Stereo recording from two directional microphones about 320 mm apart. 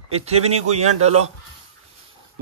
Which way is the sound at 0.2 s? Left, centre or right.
Right.